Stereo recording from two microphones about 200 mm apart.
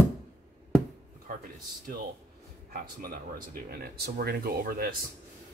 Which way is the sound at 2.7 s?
50° right (ahead or behind).